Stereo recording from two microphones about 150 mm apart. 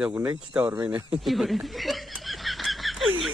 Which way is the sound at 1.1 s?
Centre (ahead or behind).